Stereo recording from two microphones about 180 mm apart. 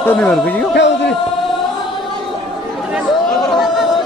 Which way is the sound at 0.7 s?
65° left (ahead or behind).